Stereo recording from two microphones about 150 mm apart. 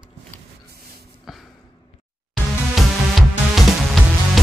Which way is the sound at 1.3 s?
Centre (ahead or behind).